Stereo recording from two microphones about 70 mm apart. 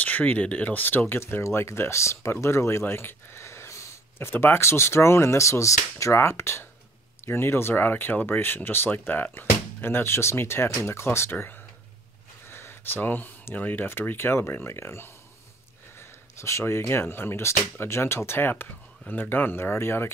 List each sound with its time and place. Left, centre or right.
0.0 s speech: left